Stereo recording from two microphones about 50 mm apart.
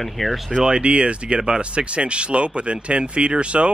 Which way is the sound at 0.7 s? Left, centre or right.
Right.